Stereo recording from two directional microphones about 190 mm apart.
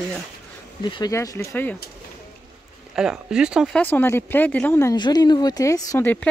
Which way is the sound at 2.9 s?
5° right (ahead or behind).